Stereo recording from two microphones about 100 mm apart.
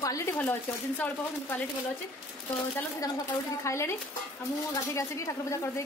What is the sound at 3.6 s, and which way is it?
Speech, 30° left (ahead or behind).